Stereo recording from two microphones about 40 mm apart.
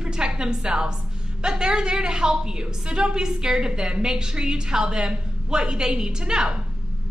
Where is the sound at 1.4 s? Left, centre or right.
Centre.